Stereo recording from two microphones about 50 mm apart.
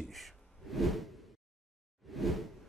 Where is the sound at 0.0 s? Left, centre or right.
Centre.